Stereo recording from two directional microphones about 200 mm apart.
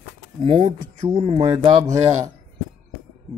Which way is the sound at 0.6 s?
20° right (ahead or behind).